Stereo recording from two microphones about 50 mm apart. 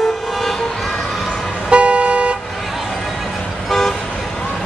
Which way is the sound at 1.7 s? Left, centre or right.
Right.